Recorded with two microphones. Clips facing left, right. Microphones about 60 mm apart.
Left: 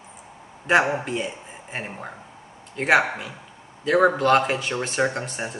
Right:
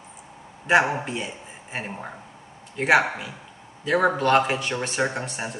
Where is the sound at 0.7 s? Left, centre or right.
Centre.